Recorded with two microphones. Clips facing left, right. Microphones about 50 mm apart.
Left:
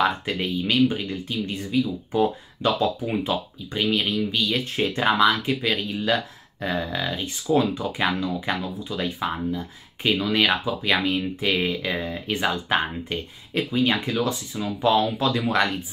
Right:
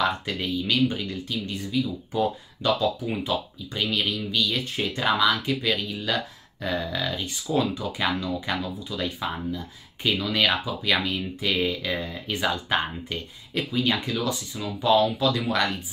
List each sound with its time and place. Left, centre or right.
0.0 s speech: centre
15.4 s speech: left